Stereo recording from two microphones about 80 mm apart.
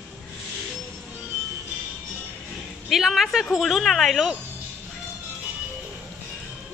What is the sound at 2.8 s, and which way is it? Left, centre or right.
A woman's voice, centre.